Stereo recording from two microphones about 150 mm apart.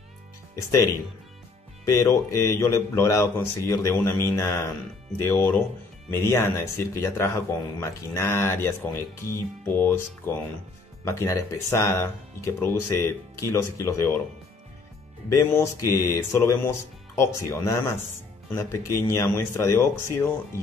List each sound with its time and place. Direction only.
0.6 s speech: 20° left (ahead or behind)
1.9 s speech: 20° left (ahead or behind)
15.2 s speech: 20° left (ahead or behind)